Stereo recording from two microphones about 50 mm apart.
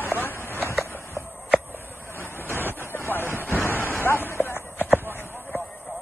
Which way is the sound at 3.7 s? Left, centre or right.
Left.